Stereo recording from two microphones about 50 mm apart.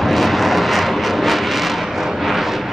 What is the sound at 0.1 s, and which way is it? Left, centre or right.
Vehicle, centre.